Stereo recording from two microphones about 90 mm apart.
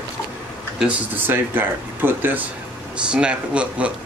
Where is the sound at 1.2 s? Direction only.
25° right (ahead or behind).